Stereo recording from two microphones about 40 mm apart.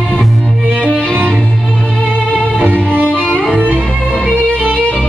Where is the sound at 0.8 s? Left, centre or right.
Left.